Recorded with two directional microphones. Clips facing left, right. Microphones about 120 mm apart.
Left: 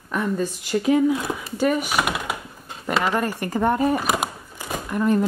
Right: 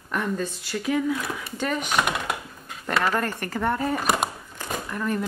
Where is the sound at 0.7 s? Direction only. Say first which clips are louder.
Left 6 dB; 25° left (ahead or behind).